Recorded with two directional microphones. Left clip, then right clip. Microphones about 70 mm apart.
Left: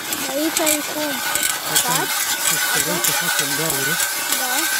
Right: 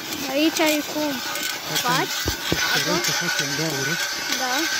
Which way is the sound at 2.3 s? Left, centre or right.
Left.